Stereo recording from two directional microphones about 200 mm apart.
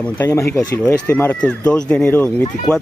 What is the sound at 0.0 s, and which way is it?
Speech, 10° left (ahead or behind).